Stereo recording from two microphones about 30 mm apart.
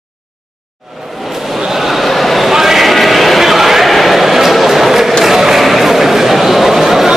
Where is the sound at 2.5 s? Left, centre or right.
Centre.